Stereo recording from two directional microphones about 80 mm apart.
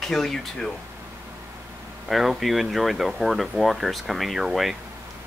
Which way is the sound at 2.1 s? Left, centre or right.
Centre.